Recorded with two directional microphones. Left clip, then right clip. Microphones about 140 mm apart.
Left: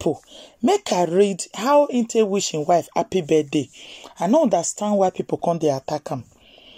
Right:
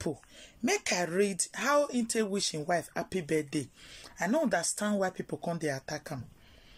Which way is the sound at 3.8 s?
50° left (ahead or behind).